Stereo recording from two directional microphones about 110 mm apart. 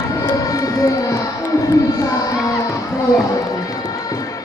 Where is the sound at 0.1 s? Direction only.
30° left (ahead or behind).